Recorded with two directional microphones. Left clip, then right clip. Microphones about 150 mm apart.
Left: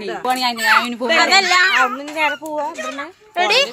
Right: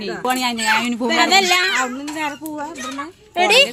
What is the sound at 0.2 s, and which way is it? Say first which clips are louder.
Speech: left 2 dB; 60° right (ahead or behind).